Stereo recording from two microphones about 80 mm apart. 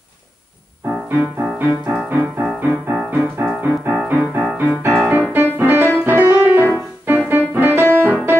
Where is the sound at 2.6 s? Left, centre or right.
Centre.